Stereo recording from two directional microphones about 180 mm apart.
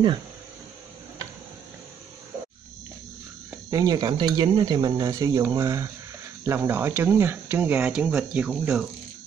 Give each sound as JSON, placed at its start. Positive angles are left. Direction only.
{"t": 3.7, "sound": "speech", "side_deg": -20}